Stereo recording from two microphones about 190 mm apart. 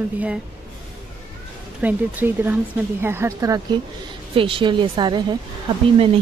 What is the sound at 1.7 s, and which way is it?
A woman's voice, 10° right (ahead or behind).